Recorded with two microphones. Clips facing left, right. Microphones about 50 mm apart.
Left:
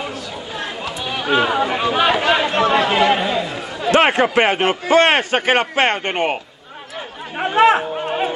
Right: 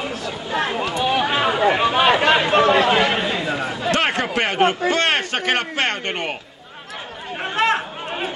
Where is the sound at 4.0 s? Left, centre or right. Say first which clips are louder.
Left 8 dB; centre.